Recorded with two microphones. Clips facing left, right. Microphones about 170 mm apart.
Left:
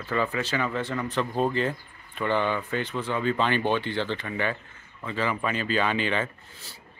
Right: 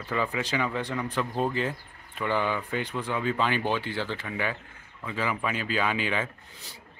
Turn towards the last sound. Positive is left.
turn(degrees=-5)  # may be behind; listen again after turning